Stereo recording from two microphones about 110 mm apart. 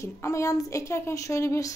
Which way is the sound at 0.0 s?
25° left (ahead or behind).